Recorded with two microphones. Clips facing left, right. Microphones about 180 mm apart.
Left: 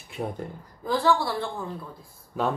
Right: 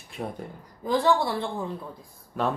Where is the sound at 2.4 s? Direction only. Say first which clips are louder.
Even; centre (ahead or behind).